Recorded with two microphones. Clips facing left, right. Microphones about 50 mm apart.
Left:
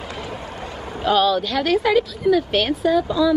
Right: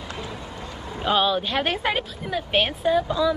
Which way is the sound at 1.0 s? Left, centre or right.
Right.